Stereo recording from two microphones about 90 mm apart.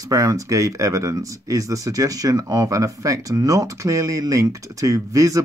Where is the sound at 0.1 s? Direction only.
40° right (ahead or behind).